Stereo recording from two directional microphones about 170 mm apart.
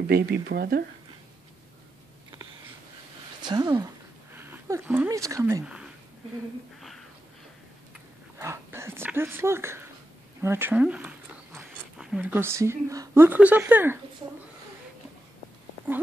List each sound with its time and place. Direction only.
0.0 s speech: 65° right (ahead or behind)
3.4 s speech: 25° right (ahead or behind)
8.4 s speech: 15° right (ahead or behind)